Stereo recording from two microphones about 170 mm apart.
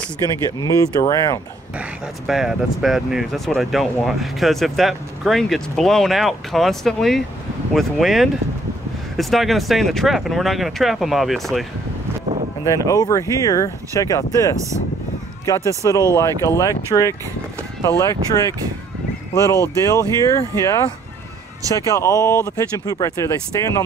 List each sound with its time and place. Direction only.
0.6 s speech: 20° left (ahead or behind)
1.8 s speech: 5° right (ahead or behind)
12.6 s speech: 20° left (ahead or behind)
19.3 s speech: 20° left (ahead or behind)